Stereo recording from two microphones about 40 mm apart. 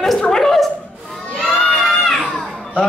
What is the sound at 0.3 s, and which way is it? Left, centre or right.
Chuckle, centre.